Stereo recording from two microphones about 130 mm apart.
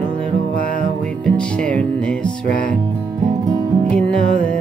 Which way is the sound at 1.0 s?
10° left (ahead or behind).